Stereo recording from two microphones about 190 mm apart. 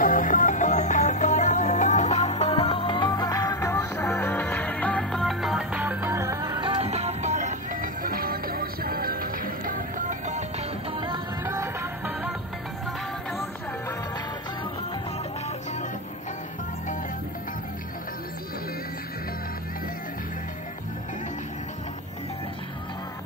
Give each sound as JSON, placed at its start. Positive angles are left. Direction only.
{"t": 0.0, "sound": "music", "side_deg": 45}
{"t": 3.1, "sound": "music", "side_deg": 20}
{"t": 10.9, "sound": "music", "side_deg": -25}
{"t": 11.4, "sound": "music", "side_deg": -15}